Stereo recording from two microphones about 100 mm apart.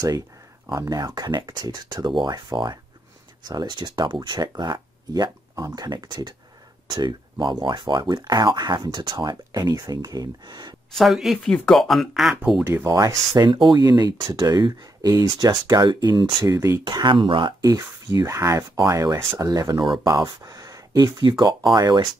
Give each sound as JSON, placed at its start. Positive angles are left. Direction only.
{"t": 0.7, "sound": "speech", "side_deg": -40}
{"t": 10.9, "sound": "speech", "side_deg": 0}
{"t": 12.8, "sound": "speech", "side_deg": -35}
{"t": 13.5, "sound": "speech", "side_deg": -50}
{"t": 13.7, "sound": "speech", "side_deg": -40}
{"t": 16.4, "sound": "speech", "side_deg": -30}
{"t": 16.8, "sound": "speech", "side_deg": -50}
{"t": 17.6, "sound": "speech", "side_deg": -35}